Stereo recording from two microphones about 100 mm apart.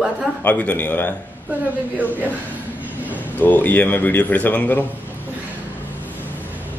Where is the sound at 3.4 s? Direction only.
20° left (ahead or behind).